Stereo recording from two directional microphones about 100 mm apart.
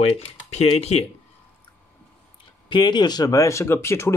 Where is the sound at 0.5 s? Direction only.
90° left.